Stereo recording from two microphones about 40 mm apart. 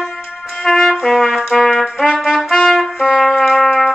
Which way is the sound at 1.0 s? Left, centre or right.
Centre.